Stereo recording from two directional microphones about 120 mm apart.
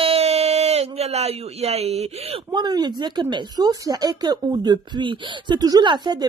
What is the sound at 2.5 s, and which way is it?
Speech, 35° right (ahead or behind).